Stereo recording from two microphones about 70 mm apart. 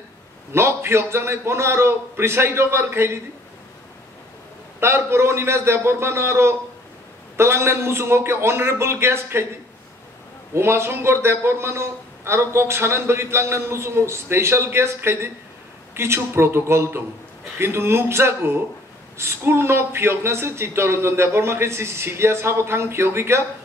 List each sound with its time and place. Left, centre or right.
0.5 s a man's voice: right
4.7 s a man's voice: right
10.5 s a man's voice: right